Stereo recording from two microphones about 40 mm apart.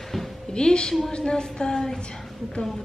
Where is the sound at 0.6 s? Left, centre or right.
Left.